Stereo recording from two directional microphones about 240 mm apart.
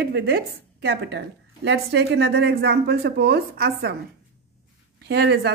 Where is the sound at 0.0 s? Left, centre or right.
Right.